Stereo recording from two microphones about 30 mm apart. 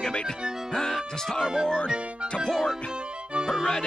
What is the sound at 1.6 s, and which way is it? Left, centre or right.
Speech, left.